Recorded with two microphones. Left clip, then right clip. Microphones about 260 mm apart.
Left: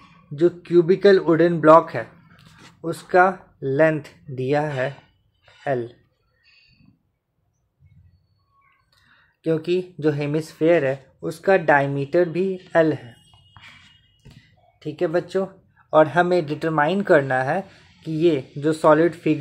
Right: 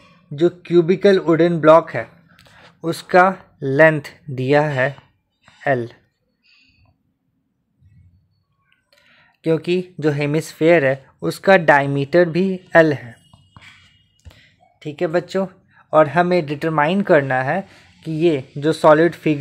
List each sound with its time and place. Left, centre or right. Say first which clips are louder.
0.4 s speech: right 2 dB; centre
9.4 s speech: right 3 dB; right
14.3 s speech: right 8 dB; right